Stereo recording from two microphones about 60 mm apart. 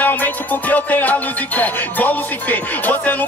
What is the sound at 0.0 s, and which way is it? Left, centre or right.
Music, left.